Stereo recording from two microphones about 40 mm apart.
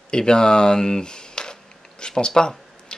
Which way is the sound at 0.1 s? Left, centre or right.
Centre.